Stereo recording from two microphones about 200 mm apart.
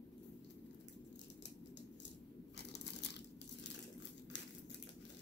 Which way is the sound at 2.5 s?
55° left (ahead or behind).